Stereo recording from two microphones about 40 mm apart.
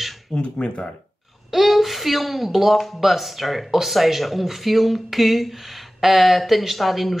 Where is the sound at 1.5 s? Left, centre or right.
Centre.